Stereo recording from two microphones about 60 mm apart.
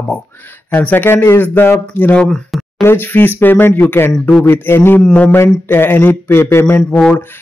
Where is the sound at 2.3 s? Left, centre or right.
Centre.